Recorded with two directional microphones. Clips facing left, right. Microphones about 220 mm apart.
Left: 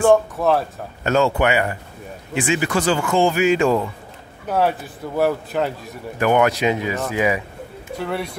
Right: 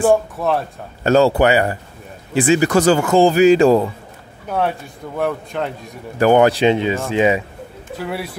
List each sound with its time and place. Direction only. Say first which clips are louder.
0.0 s speech: even; 5° right (ahead or behind)
1.0 s speech: right 5 dB; 35° right (ahead or behind)
4.5 s speech: left 1 dB; 5° left (ahead or behind)
6.1 s speech: right 5 dB; 35° right (ahead or behind)
8.0 s speech: even; 5° right (ahead or behind)